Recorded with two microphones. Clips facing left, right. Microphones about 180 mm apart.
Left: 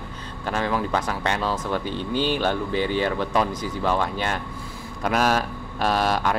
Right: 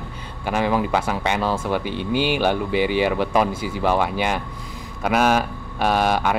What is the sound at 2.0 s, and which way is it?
Speech, 70° right (ahead or behind).